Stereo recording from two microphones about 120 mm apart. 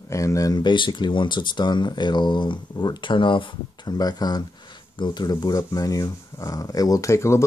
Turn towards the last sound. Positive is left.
turn(degrees=25)  # may be behind; listen again after turning